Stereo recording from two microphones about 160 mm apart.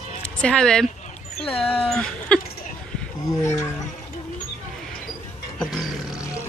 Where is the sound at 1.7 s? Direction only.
5° left (ahead or behind).